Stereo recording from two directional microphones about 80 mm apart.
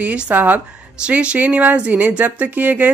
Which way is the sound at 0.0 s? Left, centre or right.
Centre.